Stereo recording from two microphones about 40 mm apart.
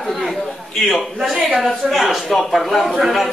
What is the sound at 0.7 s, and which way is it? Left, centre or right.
Speech, centre.